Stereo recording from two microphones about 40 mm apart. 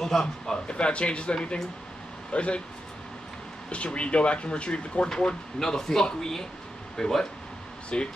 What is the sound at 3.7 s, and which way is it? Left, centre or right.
A man's voice, left.